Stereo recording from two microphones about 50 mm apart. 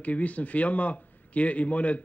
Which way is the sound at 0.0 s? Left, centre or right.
Left.